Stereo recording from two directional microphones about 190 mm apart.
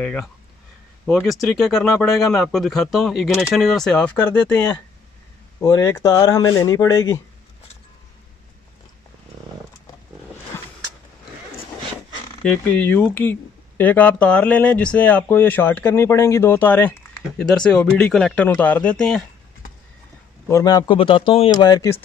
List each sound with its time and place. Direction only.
0.0 s speech: 5° left (ahead or behind)
5.6 s speech: 15° left (ahead or behind)
12.4 s speech: 10° left (ahead or behind)
20.4 s speech: 15° left (ahead or behind)